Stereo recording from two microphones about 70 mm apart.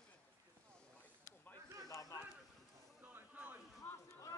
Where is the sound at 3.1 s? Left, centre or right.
Right.